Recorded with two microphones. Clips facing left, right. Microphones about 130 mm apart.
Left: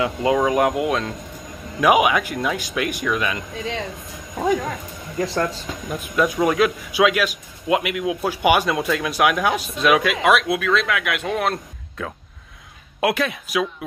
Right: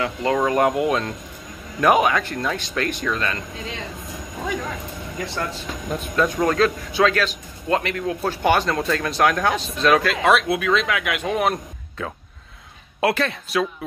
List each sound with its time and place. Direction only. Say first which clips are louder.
0.0 s a man's voice: left 2 dB; 15° left (ahead or behind)
0.4 s a man's voice: right 2 dB; 5° left (ahead or behind)
5.2 s speech: left 6 dB; 40° left (ahead or behind)
5.9 s a man's voice: left 1 dB; 10° left (ahead or behind)
13.0 s a man's voice: even; 10° left (ahead or behind)